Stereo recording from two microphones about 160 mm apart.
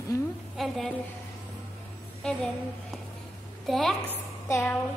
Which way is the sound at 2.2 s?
5° left (ahead or behind).